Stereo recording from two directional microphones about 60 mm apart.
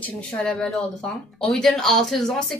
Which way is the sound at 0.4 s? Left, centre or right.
Centre.